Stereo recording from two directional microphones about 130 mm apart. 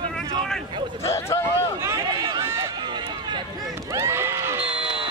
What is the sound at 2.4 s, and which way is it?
Run, 20° right (ahead or behind).